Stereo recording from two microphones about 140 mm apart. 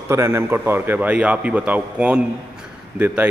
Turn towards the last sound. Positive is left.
turn(degrees=-10)  # may be behind; listen again after turning